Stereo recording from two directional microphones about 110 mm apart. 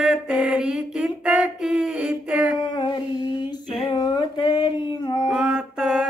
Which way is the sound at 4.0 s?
40° left (ahead or behind).